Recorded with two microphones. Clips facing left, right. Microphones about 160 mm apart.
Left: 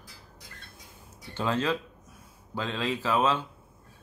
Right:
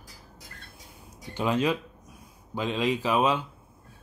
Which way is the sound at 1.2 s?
15° right (ahead or behind).